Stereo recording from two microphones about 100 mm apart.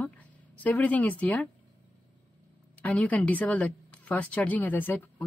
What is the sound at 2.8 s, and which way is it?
A woman's voice, 15° left (ahead or behind).